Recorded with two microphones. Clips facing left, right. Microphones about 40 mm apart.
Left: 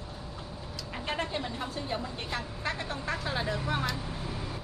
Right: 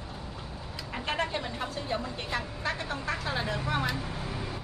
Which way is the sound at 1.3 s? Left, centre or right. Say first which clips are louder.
Right 1 dB; centre.